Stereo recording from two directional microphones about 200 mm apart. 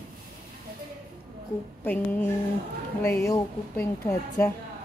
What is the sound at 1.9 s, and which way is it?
A woman's voice, 10° left (ahead or behind).